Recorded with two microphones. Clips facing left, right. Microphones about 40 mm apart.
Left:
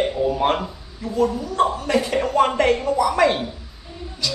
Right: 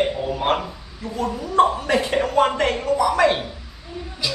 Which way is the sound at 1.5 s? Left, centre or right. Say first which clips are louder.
Right 2 dB; right.